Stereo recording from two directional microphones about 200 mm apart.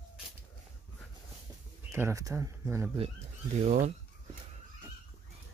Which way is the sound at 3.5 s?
40° right (ahead or behind).